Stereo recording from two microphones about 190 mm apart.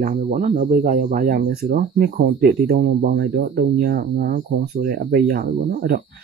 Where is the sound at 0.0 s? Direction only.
45° right (ahead or behind).